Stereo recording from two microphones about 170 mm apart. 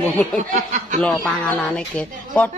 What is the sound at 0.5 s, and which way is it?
Speech, 45° right (ahead or behind).